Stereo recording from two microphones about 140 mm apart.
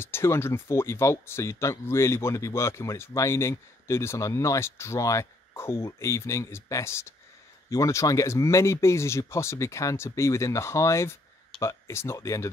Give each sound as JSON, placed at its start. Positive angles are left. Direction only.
{"t": 0.0, "sound": "speech", "side_deg": 15}